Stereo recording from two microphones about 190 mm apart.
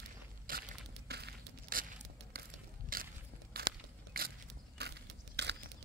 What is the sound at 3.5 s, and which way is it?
Biting, 50° right (ahead or behind).